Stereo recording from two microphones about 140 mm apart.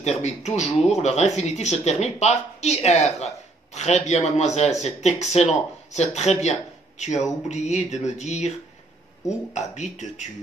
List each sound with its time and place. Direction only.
0.0 s speech: 55° left (ahead or behind)